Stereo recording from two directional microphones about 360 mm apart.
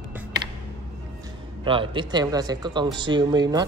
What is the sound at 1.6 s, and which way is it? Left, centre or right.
Speech, centre.